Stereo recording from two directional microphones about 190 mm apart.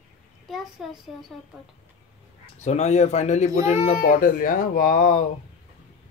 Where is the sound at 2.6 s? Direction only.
35° left (ahead or behind).